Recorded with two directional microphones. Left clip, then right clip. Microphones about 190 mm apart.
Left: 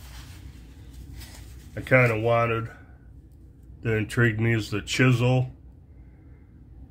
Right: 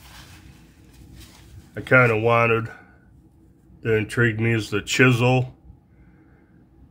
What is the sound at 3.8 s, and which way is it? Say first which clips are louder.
Speech: right 4 dB; 5° right (ahead or behind).